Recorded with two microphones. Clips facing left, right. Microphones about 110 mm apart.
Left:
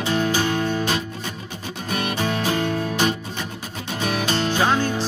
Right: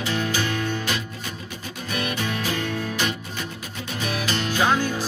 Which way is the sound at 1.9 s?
35° left (ahead or behind).